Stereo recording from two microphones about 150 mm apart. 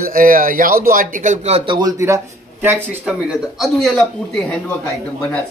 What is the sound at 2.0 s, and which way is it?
Speech, 15° right (ahead or behind).